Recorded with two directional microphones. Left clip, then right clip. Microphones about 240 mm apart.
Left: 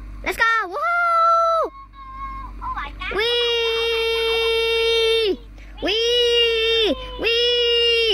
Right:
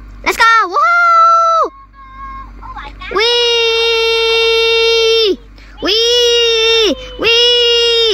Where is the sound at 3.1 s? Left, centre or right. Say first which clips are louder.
Right 9 dB; centre.